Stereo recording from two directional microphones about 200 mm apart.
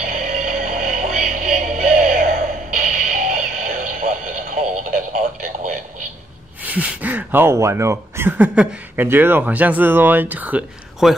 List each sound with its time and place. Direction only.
0.0 s music: 40° right (ahead or behind)
6.6 s speech: 10° right (ahead or behind)